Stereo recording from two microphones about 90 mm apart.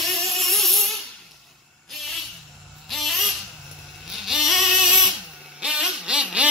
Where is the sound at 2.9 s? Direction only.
Centre (ahead or behind).